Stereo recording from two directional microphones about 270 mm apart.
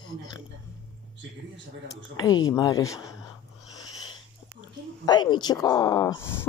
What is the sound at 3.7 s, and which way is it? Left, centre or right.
Wheeze, centre.